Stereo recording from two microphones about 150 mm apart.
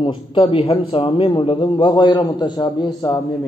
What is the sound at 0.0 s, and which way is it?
A man's voice, 35° left (ahead or behind).